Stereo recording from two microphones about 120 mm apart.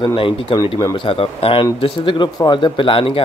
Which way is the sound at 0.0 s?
45° left (ahead or behind).